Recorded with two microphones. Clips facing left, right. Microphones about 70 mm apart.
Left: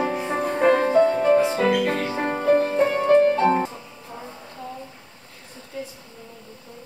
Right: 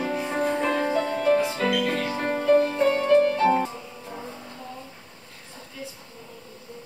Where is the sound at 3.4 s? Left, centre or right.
Centre.